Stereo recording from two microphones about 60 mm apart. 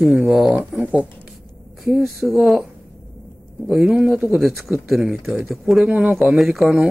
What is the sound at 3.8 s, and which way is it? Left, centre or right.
Speech, centre.